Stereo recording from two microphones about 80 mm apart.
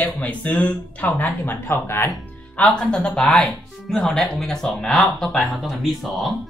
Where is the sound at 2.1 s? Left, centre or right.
Centre.